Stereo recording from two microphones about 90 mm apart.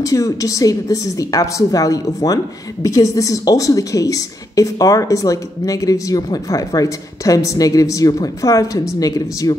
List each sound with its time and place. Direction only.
0.0 s a woman's voice: 40° left (ahead or behind)